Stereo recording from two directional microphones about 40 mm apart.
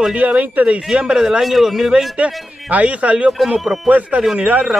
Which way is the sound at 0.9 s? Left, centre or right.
Right.